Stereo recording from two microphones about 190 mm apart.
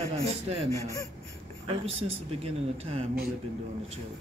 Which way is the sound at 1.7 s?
30° right (ahead or behind).